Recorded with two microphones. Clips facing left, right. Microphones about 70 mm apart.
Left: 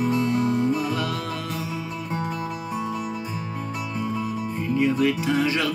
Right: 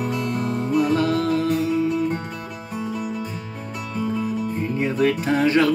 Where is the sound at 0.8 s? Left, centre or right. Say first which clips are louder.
Right 7 dB; right.